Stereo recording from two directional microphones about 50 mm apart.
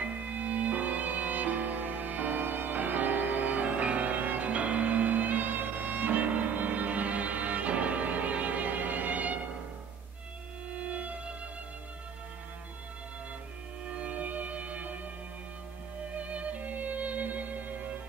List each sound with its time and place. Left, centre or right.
0.0 s music: right
10.8 s music: right
13.8 s music: right
16.2 s music: right